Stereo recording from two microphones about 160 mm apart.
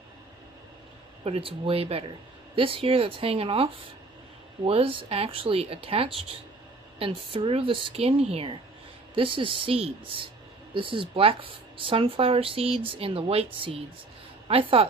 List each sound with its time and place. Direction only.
1.2 s speech: 35° right (ahead or behind)